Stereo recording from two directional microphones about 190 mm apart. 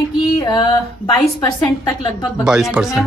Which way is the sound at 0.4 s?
20° left (ahead or behind).